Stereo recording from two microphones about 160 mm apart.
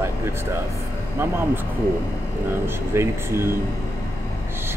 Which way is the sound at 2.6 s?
15° right (ahead or behind).